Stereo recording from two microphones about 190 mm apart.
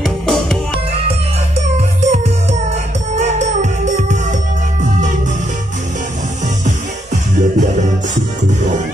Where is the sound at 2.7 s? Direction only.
35° right (ahead or behind).